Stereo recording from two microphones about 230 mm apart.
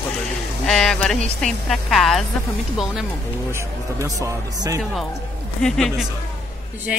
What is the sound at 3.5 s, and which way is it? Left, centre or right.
Speech, centre.